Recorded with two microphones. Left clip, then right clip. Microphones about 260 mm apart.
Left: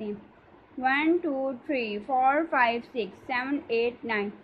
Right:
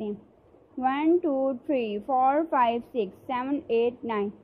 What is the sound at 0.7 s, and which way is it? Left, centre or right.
A woman's voice, centre.